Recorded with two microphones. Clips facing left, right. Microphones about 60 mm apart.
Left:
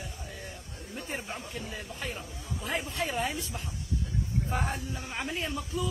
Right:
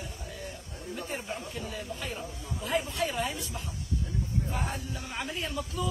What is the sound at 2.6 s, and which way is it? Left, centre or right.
Speech, left.